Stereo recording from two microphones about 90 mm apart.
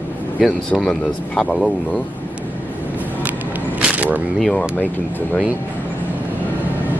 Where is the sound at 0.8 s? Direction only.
10° left (ahead or behind).